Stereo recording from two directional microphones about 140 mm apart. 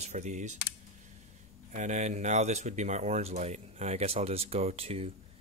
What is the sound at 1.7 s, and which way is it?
Speech, 60° right (ahead or behind).